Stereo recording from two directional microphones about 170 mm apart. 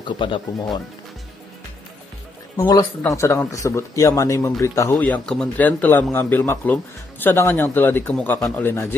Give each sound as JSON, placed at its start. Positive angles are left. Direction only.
{"t": 0.0, "sound": "speech", "side_deg": 30}
{"t": 2.5, "sound": "a man's voice", "side_deg": 20}
{"t": 4.9, "sound": "a man's voice", "side_deg": 5}